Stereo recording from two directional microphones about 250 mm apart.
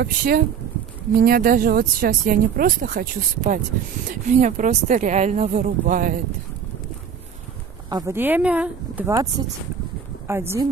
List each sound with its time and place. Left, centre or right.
0.0 s speech: right
7.9 s speech: centre